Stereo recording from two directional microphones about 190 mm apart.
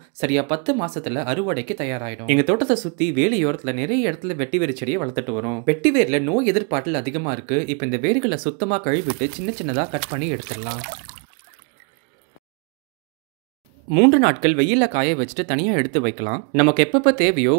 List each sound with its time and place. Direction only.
0.2 s speech: 35° right (ahead or behind)
5.7 s speech: 40° right (ahead or behind)
10.1 s speech: 40° right (ahead or behind)
13.9 s speech: 55° right (ahead or behind)